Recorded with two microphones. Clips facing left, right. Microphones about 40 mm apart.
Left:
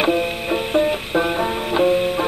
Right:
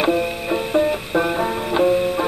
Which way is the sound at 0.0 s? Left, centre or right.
Centre.